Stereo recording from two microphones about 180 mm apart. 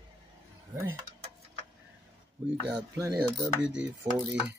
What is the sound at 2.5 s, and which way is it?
Speech, 15° right (ahead or behind).